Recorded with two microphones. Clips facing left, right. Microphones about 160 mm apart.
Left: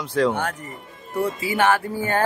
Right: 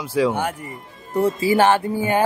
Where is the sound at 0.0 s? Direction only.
5° right (ahead or behind).